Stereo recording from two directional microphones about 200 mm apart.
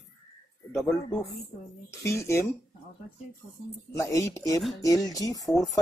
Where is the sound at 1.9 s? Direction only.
15° left (ahead or behind).